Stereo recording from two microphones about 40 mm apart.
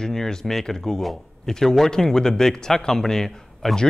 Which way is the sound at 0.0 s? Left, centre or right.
Centre.